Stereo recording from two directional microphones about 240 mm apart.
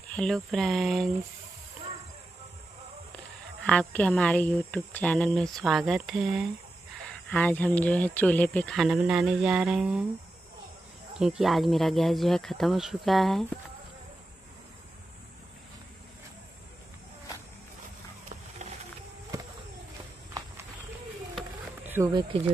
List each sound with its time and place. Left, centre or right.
0.1 s speech: centre
3.6 s speech: centre
11.1 s speech: centre
18.3 s wild animals: right
21.4 s a sound: centre